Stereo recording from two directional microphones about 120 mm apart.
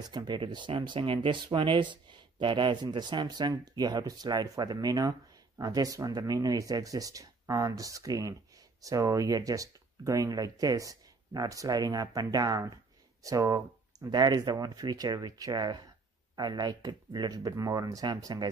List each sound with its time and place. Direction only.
0.1 s speech: 40° right (ahead or behind)